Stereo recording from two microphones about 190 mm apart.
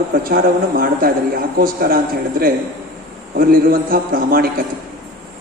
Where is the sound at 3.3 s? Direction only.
50° right (ahead or behind).